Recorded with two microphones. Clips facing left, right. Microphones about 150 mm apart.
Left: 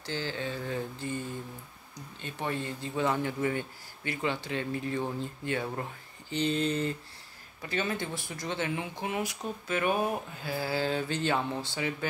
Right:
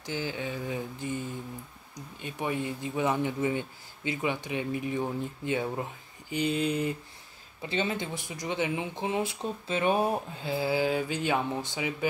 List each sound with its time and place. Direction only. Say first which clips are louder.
0.0 s speech: right 1 dB; 15° right (ahead or behind); by 10.5 s 30° right (ahead or behind)
10.5 s speech: right 3 dB; 15° right (ahead or behind)